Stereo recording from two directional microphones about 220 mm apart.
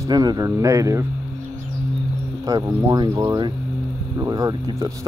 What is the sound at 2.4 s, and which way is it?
Speech, 15° right (ahead or behind).